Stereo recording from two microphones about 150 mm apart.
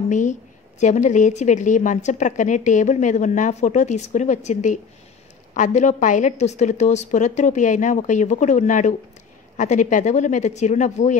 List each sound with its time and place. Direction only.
0.1 s a woman's voice: 55° left (ahead or behind)